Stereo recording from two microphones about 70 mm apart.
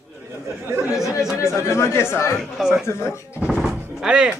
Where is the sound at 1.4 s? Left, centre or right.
Left.